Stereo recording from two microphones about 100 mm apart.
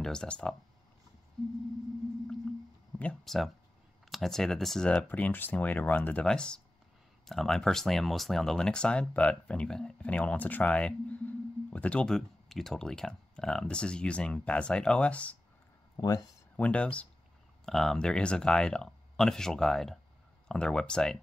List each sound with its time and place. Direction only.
0.0 s speech: 5° left (ahead or behind)
2.9 s a sound: 10° left (ahead or behind)
3.3 s speech: centre (ahead or behind)
5.0 s speech: 15° left (ahead or behind)
16.0 s speech: 35° left (ahead or behind)
16.5 s speech: 15° left (ahead or behind)